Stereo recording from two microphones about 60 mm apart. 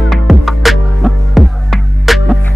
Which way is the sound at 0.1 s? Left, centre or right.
Centre.